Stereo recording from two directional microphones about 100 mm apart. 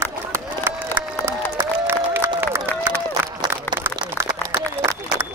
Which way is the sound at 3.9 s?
25° right (ahead or behind).